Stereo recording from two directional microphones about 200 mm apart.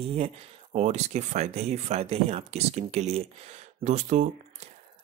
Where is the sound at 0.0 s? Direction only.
30° right (ahead or behind).